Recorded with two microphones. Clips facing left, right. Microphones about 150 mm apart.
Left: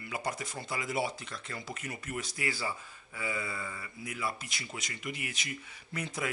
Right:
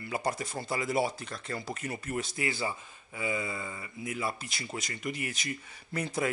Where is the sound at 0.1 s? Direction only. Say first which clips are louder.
Right 4 dB; 35° right (ahead or behind).